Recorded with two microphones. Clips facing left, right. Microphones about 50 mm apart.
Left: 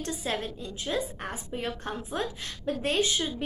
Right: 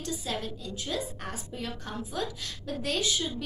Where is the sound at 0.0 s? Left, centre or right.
Left.